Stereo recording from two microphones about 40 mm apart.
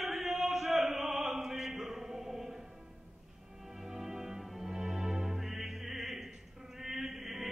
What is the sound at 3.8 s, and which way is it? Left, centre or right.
Music, centre.